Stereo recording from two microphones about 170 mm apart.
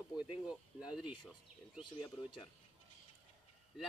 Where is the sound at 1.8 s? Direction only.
30° left (ahead or behind).